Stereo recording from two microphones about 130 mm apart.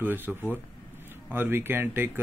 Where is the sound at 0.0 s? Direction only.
15° right (ahead or behind).